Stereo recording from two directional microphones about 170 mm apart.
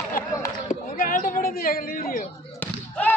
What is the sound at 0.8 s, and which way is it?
Speech, 55° left (ahead or behind).